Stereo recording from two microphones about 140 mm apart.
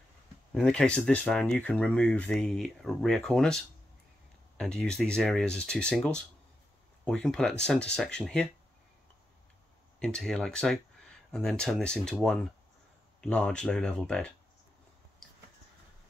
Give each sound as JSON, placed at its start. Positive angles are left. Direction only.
{"t": 0.6, "sound": "speech", "side_deg": 5}
{"t": 9.9, "sound": "speech", "side_deg": 5}